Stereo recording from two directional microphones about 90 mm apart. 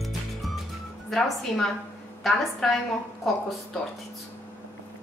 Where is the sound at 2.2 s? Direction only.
5° left (ahead or behind).